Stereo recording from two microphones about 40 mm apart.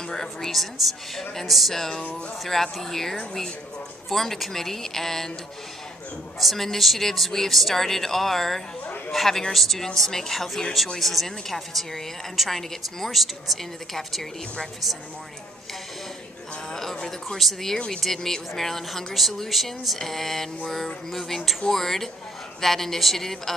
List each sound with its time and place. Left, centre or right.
0.1 s a woman's voice: centre
6.4 s a woman's voice: centre
16.9 s speech: centre
17.4 s a woman's voice: centre